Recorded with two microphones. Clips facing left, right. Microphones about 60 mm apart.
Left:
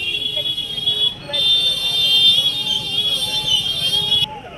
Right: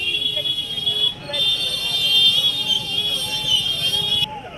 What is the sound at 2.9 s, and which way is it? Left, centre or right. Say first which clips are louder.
Vehicle: left 2 dB; right.